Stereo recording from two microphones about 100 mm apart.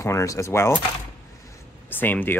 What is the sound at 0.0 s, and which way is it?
Speech, 30° left (ahead or behind).